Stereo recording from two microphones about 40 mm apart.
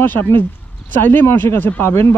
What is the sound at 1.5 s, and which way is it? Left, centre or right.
Speech, left.